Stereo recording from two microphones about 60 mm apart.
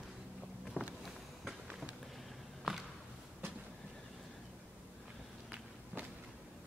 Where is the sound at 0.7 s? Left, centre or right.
Left.